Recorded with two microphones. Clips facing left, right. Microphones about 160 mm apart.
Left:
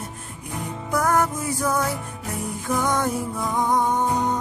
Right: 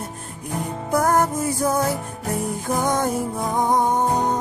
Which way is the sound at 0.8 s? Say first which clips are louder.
Right 2 dB; 40° right (ahead or behind).